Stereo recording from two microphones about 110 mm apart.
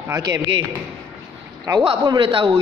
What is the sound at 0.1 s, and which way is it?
Speech, 35° right (ahead or behind).